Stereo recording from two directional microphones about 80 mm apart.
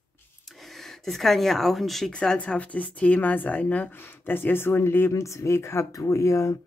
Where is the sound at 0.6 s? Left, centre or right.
Centre.